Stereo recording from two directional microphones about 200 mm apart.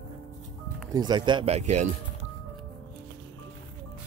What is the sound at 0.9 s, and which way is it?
Speech, 20° right (ahead or behind).